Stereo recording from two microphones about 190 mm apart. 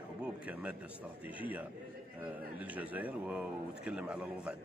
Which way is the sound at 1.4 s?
10° right (ahead or behind).